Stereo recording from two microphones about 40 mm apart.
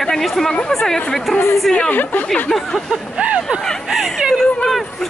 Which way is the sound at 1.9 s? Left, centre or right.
Left.